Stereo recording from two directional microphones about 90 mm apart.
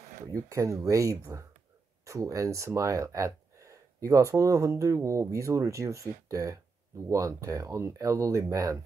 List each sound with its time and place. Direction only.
0.3 s speech: 40° right (ahead or behind)